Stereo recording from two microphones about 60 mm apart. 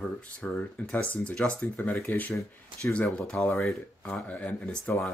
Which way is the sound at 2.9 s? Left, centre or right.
Left.